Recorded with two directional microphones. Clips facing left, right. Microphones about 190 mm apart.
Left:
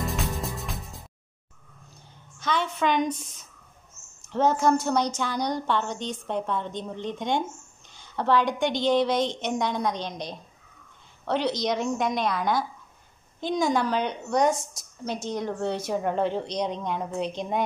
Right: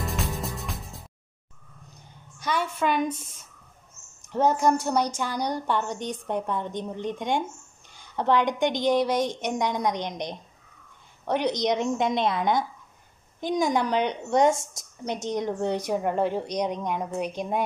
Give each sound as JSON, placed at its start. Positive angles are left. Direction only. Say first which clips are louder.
{"t": 0.0, "sound": "music", "louder": "left 1 dB", "side_deg": 0}
{"t": 2.3, "sound": "a woman's voice", "louder": "even", "side_deg": -10}
{"t": 4.3, "sound": "a woman's voice", "louder": "even", "side_deg": -15}